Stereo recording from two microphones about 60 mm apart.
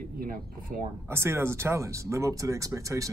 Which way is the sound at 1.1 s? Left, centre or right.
Right.